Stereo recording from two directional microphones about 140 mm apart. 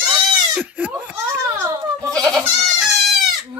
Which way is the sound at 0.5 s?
10° right (ahead or behind).